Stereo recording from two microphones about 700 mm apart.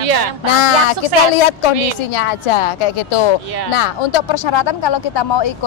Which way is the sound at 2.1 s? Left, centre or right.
Left.